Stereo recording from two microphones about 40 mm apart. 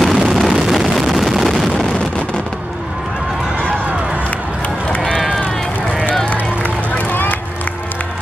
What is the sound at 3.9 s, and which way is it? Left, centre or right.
Run, right.